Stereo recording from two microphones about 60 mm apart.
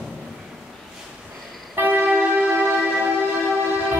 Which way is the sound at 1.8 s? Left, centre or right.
Right.